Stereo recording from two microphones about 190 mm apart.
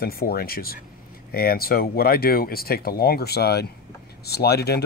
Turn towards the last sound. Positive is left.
turn(degrees=55)  # may be behind; listen again after turning